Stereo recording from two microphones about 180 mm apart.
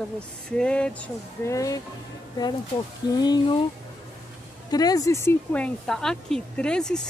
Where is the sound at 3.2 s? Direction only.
25° left (ahead or behind).